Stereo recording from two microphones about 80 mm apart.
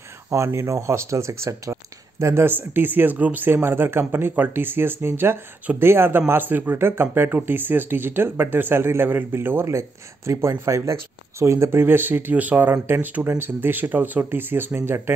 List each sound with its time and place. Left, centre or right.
0.3 s speech: right